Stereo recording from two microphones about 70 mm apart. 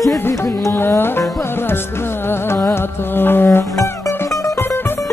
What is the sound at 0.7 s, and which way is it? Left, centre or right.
Music, left.